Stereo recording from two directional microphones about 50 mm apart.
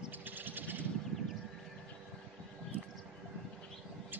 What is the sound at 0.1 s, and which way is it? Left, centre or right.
Vehicle, right.